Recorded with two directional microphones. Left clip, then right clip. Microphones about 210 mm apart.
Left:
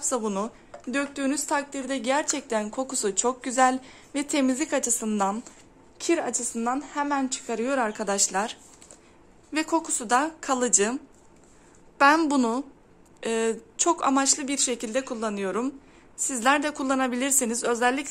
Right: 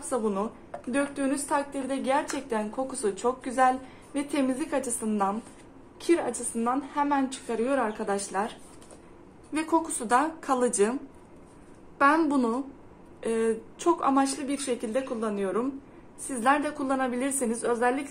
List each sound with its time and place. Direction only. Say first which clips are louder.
0.1 s a woman's voice: right 1 dB; 50° left (ahead or behind)
9.5 s a woman's voice: left 1 dB; 40° left (ahead or behind)
12.0 s a woman's voice: left 3 dB; 45° left (ahead or behind)